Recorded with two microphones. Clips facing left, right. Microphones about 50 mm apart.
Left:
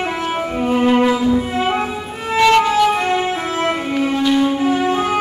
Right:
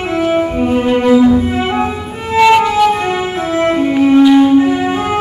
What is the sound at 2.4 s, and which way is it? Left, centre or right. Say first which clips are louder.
Violin: right 4 dB; centre.